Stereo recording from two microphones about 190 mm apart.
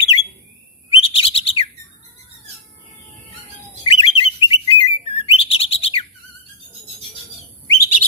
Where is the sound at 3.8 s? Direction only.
30° left (ahead or behind).